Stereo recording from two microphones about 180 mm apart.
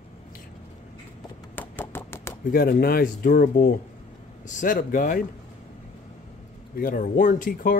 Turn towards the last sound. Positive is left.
turn(degrees=50)  # may be behind; listen again after turning